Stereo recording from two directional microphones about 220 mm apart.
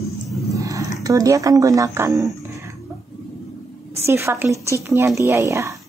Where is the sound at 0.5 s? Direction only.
15° right (ahead or behind).